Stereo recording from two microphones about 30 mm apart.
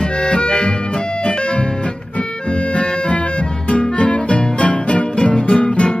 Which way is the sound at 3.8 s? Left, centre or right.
Left.